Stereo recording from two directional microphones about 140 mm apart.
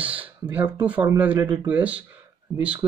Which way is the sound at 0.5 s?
10° right (ahead or behind).